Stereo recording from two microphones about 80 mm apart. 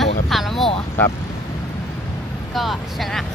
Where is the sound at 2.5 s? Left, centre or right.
Centre.